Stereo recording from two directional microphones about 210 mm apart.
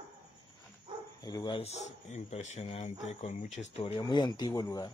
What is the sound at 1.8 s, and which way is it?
Speech, 35° left (ahead or behind).